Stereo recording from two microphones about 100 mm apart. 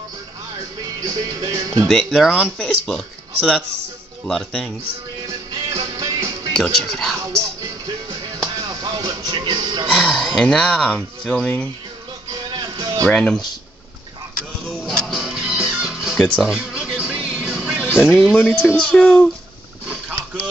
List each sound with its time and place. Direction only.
1.0 s speech: 40° right (ahead or behind)
1.9 s speech: 5° left (ahead or behind)
2.6 s speech: 5° left (ahead or behind)
5.2 s music: 35° right (ahead or behind)
6.5 s speech: 5° left (ahead or behind)
8.5 s music: 40° right (ahead or behind)
9.8 s a sound: 5° left (ahead or behind)
10.4 s speech: 10° left (ahead or behind)
12.3 s music: 45° right (ahead or behind)
13.0 s speech: 10° left (ahead or behind)
14.7 s music: centre (ahead or behind)
18.4 s speech: 10° left (ahead or behind)